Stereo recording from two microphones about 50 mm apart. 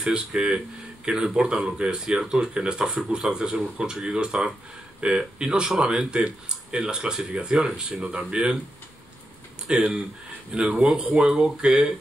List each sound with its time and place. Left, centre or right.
0.0 s speech: centre
9.7 s speech: centre